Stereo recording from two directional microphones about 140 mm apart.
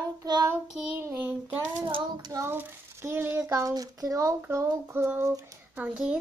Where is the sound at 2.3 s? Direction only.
20° right (ahead or behind).